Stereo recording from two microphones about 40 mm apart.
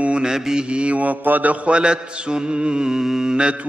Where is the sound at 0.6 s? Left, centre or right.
Right.